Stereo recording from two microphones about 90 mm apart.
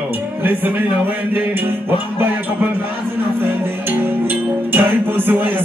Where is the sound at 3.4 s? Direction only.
20° right (ahead or behind).